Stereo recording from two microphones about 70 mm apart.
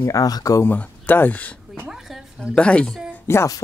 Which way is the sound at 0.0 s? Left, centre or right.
Left.